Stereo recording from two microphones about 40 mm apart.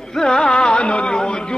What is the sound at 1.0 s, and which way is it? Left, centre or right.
Speech, centre.